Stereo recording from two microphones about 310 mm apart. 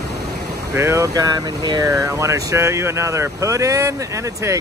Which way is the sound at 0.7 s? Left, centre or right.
Centre.